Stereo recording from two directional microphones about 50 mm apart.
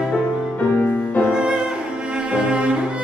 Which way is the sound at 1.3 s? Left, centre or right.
Centre.